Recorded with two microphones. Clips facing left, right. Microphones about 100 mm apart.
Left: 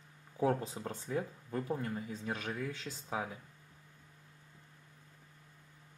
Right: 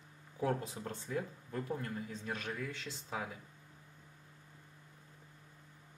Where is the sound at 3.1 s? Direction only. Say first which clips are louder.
Left 3 dB; 15° left (ahead or behind).